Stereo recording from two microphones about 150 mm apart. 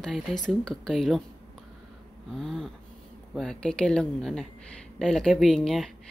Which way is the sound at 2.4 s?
5° left (ahead or behind).